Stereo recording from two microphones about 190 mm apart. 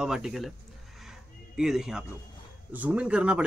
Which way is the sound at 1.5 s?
5° right (ahead or behind).